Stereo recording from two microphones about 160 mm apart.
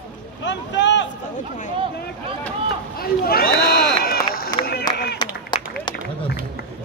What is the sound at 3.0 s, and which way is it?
Run, 70° left (ahead or behind).